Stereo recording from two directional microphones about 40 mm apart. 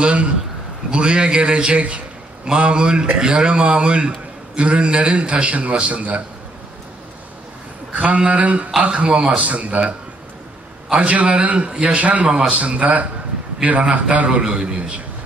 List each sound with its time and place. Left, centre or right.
0.0 s a sound: right
0.8 s a man's voice: right
7.9 s a man's voice: right
14.4 s a man's voice: right